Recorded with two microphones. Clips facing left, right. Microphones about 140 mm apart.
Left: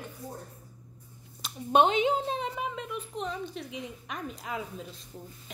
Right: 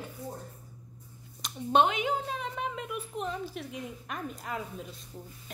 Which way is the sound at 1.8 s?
25° left (ahead or behind).